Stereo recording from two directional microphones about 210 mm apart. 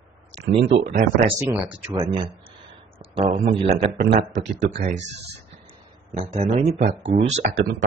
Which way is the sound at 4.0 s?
45° right (ahead or behind).